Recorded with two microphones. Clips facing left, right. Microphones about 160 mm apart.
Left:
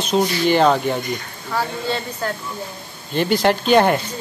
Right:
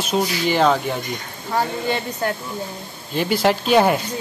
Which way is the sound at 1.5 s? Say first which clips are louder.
Right 1 dB; 15° right (ahead or behind).